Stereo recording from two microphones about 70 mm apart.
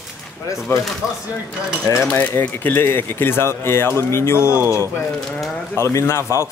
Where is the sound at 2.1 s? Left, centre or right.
Left.